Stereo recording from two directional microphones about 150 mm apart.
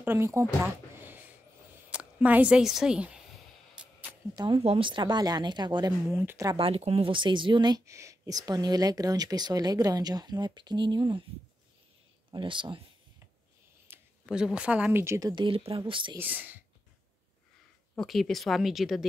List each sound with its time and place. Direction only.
0.0 s speech: 15° right (ahead or behind)
3.8 s a sound: 5° right (ahead or behind)
4.4 s speech: 35° right (ahead or behind)
6.0 s speech: 15° right (ahead or behind)
6.5 s speech: 40° right (ahead or behind)
12.3 s speech: 35° right (ahead or behind)
13.8 s speech: 5° right (ahead or behind); by 16.2 s 30° right (ahead or behind)
16.2 s speech: 10° right (ahead or behind)
17.9 s speech: centre (ahead or behind)